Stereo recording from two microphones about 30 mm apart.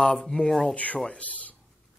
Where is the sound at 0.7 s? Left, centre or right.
Left.